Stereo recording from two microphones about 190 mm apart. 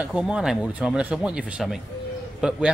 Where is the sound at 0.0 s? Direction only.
5° right (ahead or behind).